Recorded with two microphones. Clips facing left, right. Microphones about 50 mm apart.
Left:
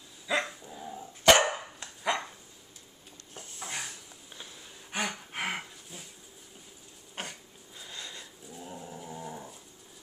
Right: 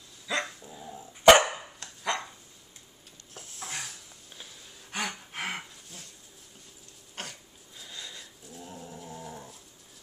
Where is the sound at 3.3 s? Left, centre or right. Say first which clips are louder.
Even; centre.